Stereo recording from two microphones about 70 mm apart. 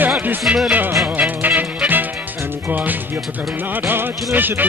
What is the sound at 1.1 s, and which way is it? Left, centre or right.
Music, right.